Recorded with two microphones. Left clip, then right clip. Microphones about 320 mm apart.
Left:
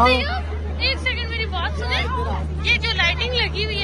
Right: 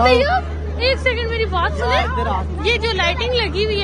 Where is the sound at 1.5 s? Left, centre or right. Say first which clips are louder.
Right 7 dB; centre.